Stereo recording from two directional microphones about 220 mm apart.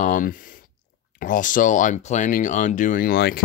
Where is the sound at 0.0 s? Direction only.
40° left (ahead or behind).